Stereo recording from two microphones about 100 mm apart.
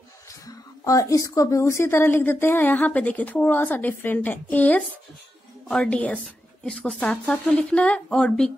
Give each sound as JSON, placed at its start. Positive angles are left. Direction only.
{"t": 0.5, "sound": "a woman's voice", "side_deg": 35}